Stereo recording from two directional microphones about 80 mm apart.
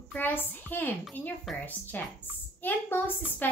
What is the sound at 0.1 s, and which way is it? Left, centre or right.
A woman's voice, left.